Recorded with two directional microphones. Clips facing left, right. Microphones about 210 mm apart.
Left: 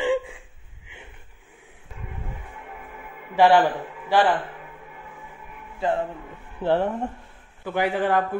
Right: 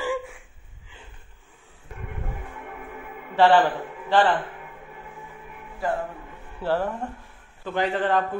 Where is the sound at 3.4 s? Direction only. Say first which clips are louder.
Left 1 dB; 15° left (ahead or behind).